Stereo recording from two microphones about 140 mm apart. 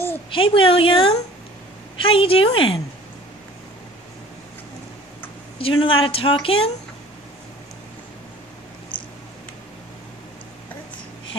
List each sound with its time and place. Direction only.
0.3 s a woman's voice: 40° left (ahead or behind)
5.6 s a woman's voice: 40° left (ahead or behind)